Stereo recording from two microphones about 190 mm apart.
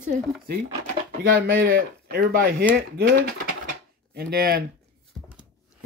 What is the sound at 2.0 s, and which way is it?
Speech, 50° right (ahead or behind).